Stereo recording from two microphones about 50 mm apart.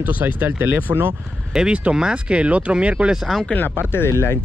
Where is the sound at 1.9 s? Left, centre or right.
Centre.